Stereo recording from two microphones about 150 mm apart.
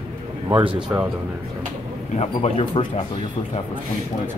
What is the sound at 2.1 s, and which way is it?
Speech, 35° left (ahead or behind).